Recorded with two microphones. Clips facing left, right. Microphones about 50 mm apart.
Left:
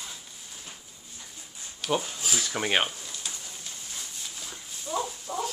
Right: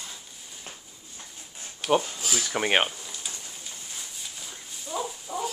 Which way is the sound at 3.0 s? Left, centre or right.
Centre.